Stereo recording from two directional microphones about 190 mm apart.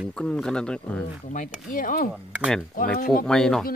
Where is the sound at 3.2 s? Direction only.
5° left (ahead or behind).